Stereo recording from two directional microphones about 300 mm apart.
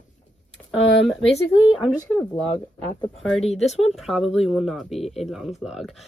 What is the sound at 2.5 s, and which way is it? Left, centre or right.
Speech, centre.